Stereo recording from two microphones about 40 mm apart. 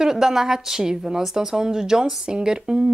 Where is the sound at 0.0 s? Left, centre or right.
Centre.